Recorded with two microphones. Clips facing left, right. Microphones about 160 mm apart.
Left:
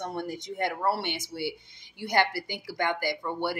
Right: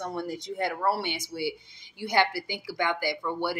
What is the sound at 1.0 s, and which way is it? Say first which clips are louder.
Speech: right 1 dB; 55° left (ahead or behind).